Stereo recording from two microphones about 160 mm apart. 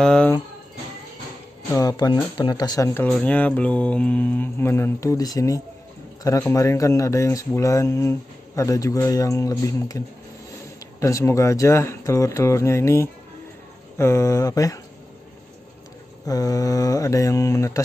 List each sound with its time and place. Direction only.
0.0 s speech: 5° left (ahead or behind)
1.7 s speech: 20° left (ahead or behind)
16.3 s speech: 20° left (ahead or behind)